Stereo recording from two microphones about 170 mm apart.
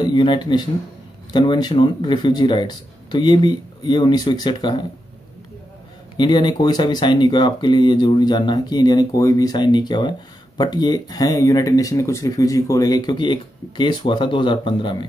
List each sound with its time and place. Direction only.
0.0 s speech: 25° left (ahead or behind)
6.1 s speech: 25° left (ahead or behind)